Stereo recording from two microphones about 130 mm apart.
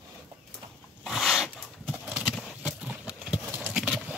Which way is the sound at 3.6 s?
5° right (ahead or behind).